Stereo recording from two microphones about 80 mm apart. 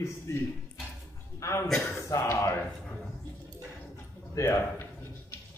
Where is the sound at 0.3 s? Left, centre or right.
Left.